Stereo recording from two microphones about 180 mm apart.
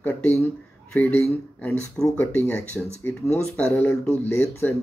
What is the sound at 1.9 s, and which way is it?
Speech, 10° left (ahead or behind).